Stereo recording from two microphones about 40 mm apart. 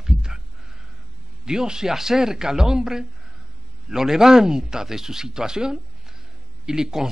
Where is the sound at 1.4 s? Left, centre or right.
Centre.